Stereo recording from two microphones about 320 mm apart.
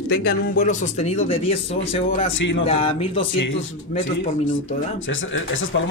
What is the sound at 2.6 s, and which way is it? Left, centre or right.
Speech, centre.